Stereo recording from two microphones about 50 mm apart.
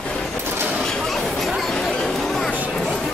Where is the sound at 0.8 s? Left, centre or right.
Centre.